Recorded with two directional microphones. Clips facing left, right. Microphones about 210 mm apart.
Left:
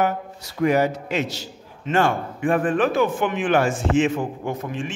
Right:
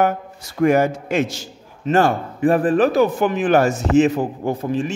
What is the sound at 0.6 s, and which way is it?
A man's voice, 50° right (ahead or behind).